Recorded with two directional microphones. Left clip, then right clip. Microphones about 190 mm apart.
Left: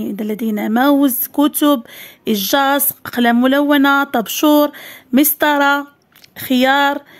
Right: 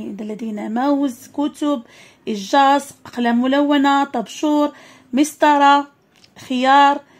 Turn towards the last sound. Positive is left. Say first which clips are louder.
# right 1 dB
turn(degrees=40)  # may be behind; listen again after turning